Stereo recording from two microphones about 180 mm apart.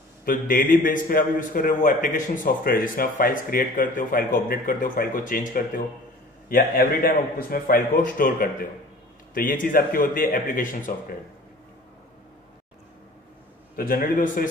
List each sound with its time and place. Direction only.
0.2 s a man's voice: 50° left (ahead or behind)
13.7 s a man's voice: 55° left (ahead or behind)